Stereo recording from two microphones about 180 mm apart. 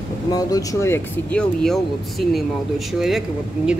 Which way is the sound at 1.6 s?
Centre (ahead or behind).